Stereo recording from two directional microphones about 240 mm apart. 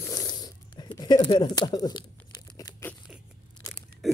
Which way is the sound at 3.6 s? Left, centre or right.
Centre.